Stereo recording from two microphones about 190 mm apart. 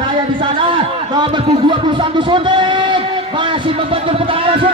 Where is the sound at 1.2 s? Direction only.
25° right (ahead or behind).